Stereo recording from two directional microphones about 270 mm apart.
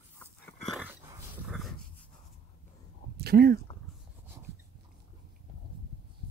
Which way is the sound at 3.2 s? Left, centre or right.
Right.